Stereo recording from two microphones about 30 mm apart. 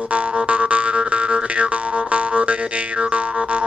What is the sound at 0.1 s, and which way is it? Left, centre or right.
Music, right.